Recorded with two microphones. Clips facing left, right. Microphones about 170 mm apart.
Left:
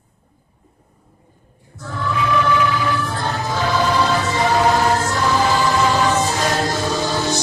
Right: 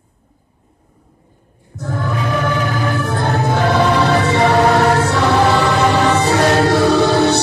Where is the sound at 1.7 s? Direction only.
50° right (ahead or behind); by 7.4 s 65° right (ahead or behind).